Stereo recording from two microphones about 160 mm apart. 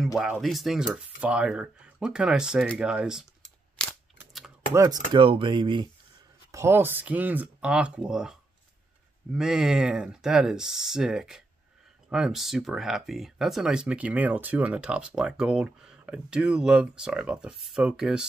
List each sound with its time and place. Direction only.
0.2 s speech: centre (ahead or behind)
2.8 s camera: 5° right (ahead or behind)
4.7 s speech: 20° right (ahead or behind)
5.1 s speech: 30° right (ahead or behind)
6.5 s speech: 15° right (ahead or behind)